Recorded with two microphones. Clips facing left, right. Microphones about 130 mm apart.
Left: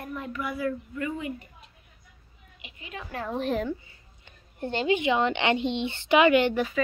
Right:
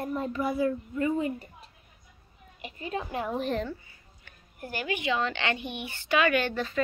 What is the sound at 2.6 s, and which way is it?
Speech, 40° right (ahead or behind).